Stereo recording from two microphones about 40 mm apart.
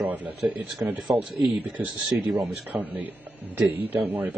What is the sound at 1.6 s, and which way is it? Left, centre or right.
A man's voice, right.